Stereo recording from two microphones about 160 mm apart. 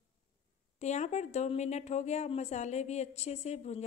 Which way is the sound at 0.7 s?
45° left (ahead or behind).